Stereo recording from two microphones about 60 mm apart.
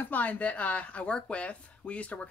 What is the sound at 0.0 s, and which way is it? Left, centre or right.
Speech, left.